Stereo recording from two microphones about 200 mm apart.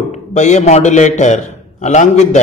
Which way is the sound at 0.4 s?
35° left (ahead or behind).